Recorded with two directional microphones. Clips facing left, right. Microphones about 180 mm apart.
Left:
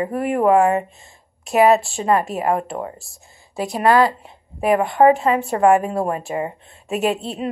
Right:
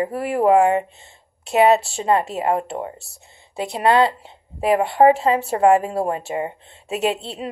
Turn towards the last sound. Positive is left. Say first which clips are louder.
# left 2 dB
turn(degrees=-30)  # may be behind; listen again after turning